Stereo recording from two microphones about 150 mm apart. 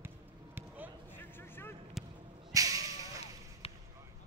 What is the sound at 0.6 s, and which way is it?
Basketball bounce, 10° right (ahead or behind).